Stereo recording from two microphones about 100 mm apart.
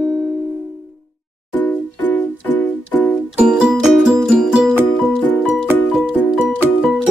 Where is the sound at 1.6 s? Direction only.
15° left (ahead or behind).